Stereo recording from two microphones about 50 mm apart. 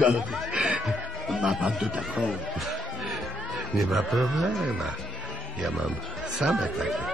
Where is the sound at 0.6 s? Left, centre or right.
Centre.